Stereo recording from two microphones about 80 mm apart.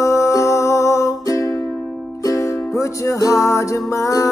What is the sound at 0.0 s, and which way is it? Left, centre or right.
Music, left.